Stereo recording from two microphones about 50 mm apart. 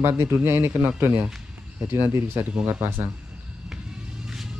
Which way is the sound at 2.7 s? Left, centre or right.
Right.